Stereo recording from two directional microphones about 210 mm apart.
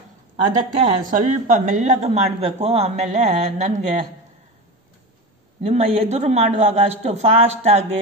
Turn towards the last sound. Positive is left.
turn(degrees=-30)  # may be behind; listen again after turning